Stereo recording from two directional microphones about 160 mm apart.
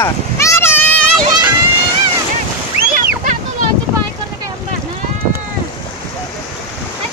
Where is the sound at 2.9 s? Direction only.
55° right (ahead or behind).